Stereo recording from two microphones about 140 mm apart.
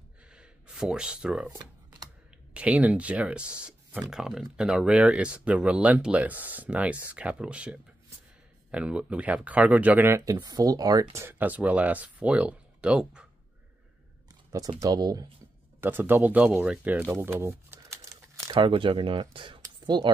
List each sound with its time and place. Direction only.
0.3 s a sound: 5° right (ahead or behind)
1.5 s a sound: 30° right (ahead or behind)
2.5 s speech: 10° right (ahead or behind)
14.5 s speech: 25° right (ahead or behind)
15.8 s speech: 15° right (ahead or behind)
18.5 s speech: 35° right (ahead or behind)